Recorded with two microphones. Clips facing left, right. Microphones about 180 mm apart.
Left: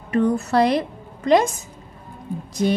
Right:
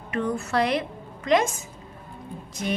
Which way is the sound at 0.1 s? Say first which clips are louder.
Left 7 dB; 40° left (ahead or behind).